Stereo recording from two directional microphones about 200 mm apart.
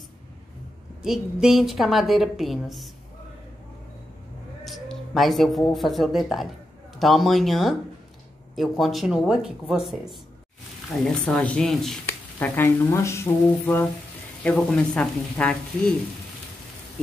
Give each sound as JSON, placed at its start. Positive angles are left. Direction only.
{"t": 1.0, "sound": "a woman's voice", "side_deg": 0}
{"t": 4.6, "sound": "music", "side_deg": 0}
{"t": 5.7, "sound": "a woman's voice", "side_deg": 0}